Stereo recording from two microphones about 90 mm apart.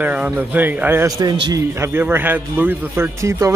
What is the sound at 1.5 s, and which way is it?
A man's voice, 35° right (ahead or behind).